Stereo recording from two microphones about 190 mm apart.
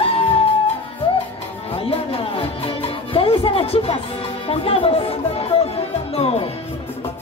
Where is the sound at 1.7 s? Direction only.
30° left (ahead or behind).